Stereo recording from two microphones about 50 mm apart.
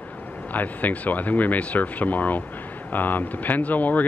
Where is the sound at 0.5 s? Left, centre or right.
Left.